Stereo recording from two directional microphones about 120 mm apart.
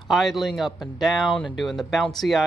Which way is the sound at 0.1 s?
Centre (ahead or behind).